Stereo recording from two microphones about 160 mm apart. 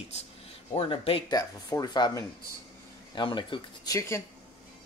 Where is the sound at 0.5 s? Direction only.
35° left (ahead or behind).